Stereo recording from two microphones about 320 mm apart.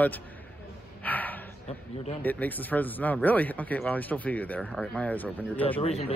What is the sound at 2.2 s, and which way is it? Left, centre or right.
Speech, centre.